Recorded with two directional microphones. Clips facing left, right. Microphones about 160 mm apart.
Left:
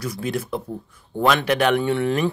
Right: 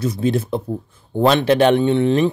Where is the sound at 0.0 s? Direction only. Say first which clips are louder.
Right 7 dB; 25° right (ahead or behind).